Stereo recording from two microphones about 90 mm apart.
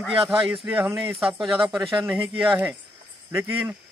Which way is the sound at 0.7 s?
25° right (ahead or behind).